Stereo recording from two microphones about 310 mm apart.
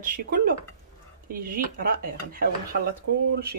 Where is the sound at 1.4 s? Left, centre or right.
Right.